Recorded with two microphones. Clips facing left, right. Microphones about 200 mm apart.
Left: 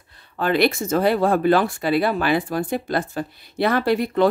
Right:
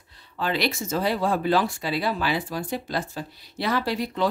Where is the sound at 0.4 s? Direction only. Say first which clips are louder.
Left 7 dB; 55° left (ahead or behind).